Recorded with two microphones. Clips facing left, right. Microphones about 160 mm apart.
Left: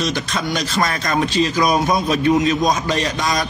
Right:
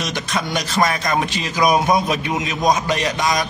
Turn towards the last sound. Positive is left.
turn(degrees=-15)  # may be behind; listen again after turning